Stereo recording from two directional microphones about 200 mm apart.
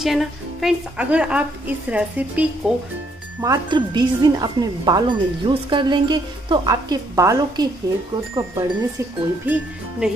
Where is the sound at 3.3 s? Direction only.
15° right (ahead or behind).